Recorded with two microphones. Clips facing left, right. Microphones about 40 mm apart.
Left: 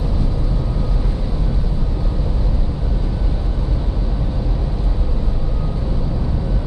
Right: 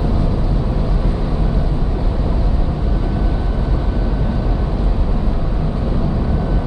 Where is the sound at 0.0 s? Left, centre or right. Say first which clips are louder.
Right 4 dB; right.